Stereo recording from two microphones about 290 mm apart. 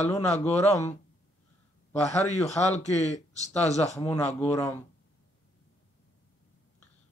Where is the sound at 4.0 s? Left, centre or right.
Centre.